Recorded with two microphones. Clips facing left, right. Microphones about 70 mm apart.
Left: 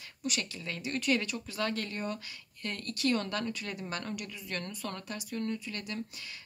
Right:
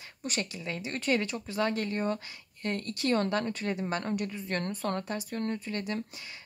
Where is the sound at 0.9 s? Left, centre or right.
Right.